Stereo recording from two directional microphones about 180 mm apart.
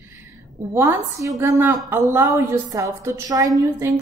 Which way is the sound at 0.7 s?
15° right (ahead or behind).